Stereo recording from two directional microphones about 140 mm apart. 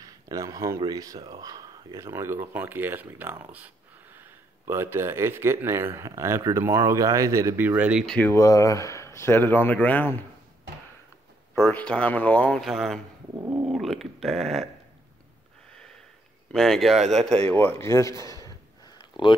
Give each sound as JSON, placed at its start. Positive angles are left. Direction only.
{"t": 0.0, "sound": "speech", "side_deg": -25}
{"t": 8.0, "sound": "speech", "side_deg": 5}
{"t": 8.3, "sound": "speech", "side_deg": 25}
{"t": 11.5, "sound": "speech", "side_deg": 15}
{"t": 13.4, "sound": "speech", "side_deg": -20}
{"t": 13.7, "sound": "speech", "side_deg": 0}
{"t": 16.5, "sound": "speech", "side_deg": 5}